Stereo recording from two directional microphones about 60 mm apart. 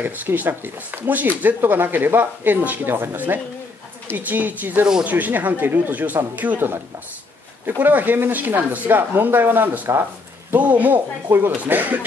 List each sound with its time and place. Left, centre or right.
0.0 s speech: right
11.2 s speech: right
11.6 s speech: right